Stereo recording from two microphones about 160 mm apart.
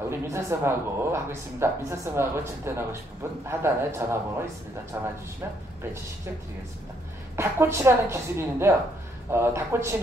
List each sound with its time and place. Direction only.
0.1 s speech: 15° right (ahead or behind)
7.3 s speech: 15° right (ahead or behind)